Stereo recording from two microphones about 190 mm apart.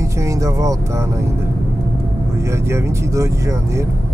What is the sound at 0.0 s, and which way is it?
Speech, 15° right (ahead or behind).